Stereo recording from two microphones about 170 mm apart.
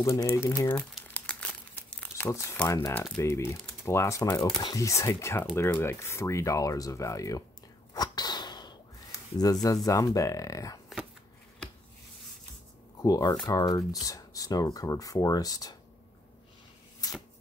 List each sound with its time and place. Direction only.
0.0 s speech: 15° left (ahead or behind)
1.0 s crumpling: 5° left (ahead or behind)
3.8 s speech: 15° left (ahead or behind)
7.9 s a sound: 25° left (ahead or behind)
9.4 s speech: 20° left (ahead or behind)
13.0 s speech: 20° left (ahead or behind)